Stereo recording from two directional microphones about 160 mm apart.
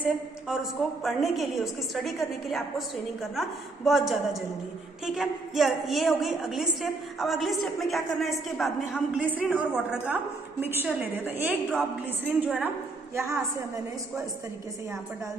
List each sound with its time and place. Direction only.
0.0 s a woman's voice: 5° right (ahead or behind)
13.1 s a woman's voice: 15° right (ahead or behind)